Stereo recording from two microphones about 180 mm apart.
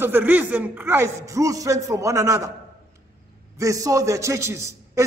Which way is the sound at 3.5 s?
20° right (ahead or behind).